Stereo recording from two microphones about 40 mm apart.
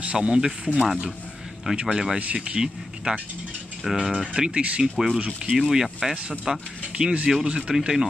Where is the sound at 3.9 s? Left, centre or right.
Centre.